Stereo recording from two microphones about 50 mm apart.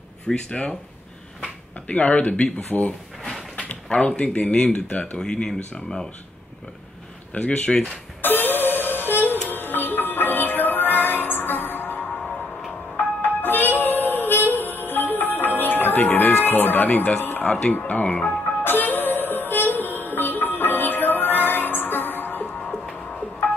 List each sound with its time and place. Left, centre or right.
0.3 s speech: centre
2.7 s speech: centre
4.2 s speech: left
4.9 s speech: left
5.2 s speech: centre
7.3 s speech: left
8.2 s music: left
12.2 s music: centre
12.9 s music: left
17.2 s a sound: left
17.5 s speech: left
18.6 s music: left
22.7 s music: centre